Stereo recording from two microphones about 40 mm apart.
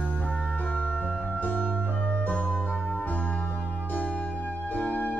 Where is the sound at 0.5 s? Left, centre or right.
Left.